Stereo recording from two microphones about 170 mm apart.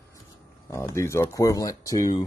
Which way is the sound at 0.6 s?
15° left (ahead or behind).